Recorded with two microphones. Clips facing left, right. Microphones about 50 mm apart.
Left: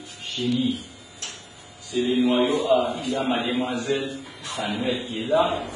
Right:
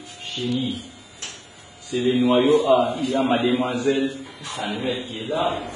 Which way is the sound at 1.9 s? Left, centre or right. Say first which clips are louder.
Right 2 dB; right.